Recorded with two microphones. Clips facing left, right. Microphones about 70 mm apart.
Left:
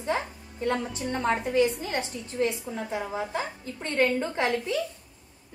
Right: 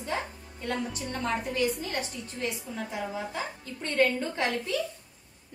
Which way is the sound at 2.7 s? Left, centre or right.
Left.